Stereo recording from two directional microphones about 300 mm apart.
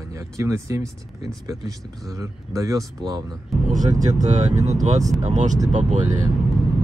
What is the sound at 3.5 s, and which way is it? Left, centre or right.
Speech, centre.